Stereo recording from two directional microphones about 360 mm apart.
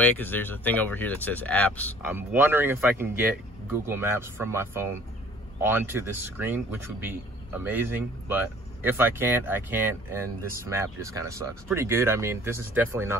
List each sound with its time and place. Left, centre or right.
0.0 s speech: centre
2.0 s speech: centre